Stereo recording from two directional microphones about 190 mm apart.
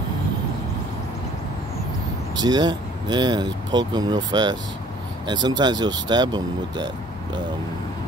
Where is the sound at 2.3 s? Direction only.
20° right (ahead or behind).